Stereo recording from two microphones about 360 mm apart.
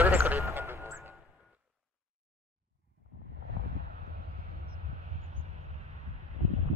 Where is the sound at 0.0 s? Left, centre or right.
Centre.